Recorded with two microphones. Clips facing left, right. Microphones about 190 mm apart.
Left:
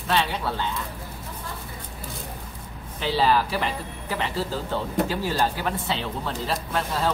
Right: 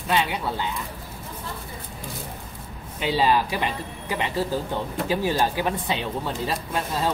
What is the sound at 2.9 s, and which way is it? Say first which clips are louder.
Speech: even; 15° right (ahead or behind).